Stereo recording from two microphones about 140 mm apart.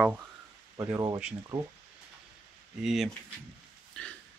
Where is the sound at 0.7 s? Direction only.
20° right (ahead or behind).